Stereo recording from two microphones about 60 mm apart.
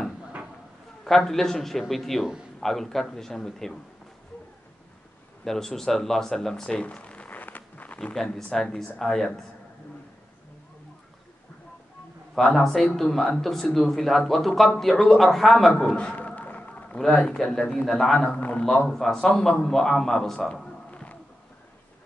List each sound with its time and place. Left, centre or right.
1.0 s speech: centre
5.4 s speech: centre; by 8.1 s left
8.1 s speech: centre
12.4 s speech: centre
16.0 s a sound: left
17.5 s a man's voice: centre
18.3 s a man's voice: left
18.9 s a man's voice: centre
20.9 s a sound: left